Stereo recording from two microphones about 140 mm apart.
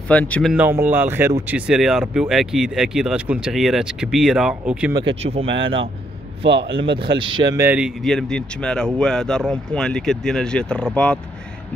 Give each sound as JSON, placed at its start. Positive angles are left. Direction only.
{"t": 0.1, "sound": "speech", "side_deg": 10}
{"t": 0.5, "sound": "speech", "side_deg": -15}
{"t": 1.5, "sound": "speech", "side_deg": -5}
{"t": 5.0, "sound": "speech", "side_deg": -45}
{"t": 8.0, "sound": "speech", "side_deg": 5}